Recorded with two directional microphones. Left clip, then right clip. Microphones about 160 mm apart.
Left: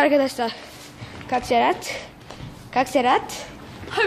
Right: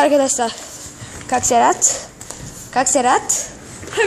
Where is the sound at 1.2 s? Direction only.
20° right (ahead or behind).